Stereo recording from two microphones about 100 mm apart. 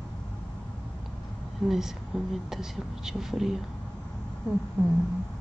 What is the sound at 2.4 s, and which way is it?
Speech, 5° right (ahead or behind).